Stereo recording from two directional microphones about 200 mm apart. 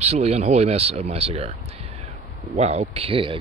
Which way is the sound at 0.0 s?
30° right (ahead or behind).